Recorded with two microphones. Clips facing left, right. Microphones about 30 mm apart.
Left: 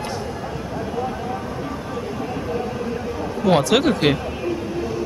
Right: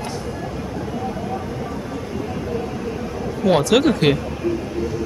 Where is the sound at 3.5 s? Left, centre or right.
Centre.